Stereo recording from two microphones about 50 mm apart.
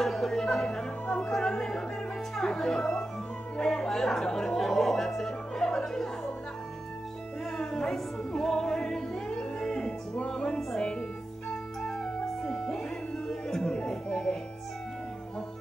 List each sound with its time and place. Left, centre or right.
0.0 s music: centre
1.0 s music: left
1.3 s chatter: centre
2.3 s speech: centre
3.6 s music: centre
7.5 s music: centre
13.3 s speech: centre